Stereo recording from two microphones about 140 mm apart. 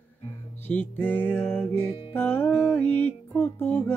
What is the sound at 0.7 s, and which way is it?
Music, 15° left (ahead or behind).